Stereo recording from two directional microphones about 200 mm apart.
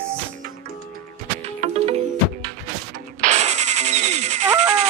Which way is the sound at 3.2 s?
35° right (ahead or behind).